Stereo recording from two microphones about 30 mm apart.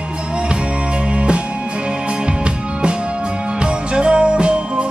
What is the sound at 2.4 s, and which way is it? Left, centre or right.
Music, right.